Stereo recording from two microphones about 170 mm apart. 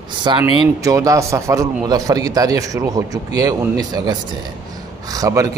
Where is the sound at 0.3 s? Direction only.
25° right (ahead or behind).